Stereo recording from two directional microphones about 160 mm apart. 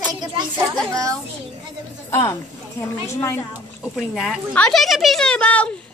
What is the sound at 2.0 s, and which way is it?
A woman's voice, 15° left (ahead or behind).